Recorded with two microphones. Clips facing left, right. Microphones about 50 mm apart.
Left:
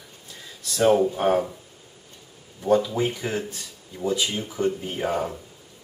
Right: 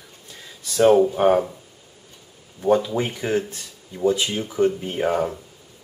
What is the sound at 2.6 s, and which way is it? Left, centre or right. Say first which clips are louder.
Speech: right 1 dB; centre.